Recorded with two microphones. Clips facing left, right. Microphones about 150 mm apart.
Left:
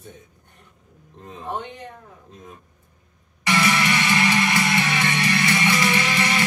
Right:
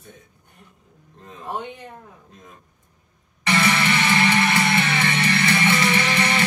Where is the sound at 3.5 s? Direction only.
25° right (ahead or behind).